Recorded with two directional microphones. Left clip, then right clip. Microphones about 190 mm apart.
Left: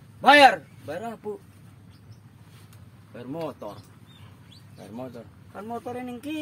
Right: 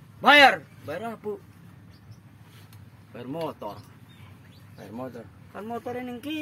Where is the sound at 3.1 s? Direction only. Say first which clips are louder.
Right 1 dB; 10° right (ahead or behind).